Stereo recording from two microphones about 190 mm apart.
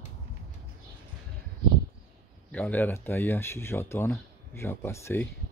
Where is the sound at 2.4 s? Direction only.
10° left (ahead or behind).